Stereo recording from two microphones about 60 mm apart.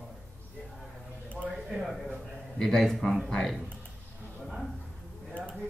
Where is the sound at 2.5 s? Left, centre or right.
Centre.